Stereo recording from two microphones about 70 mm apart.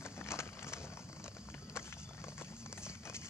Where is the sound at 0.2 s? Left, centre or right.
Left.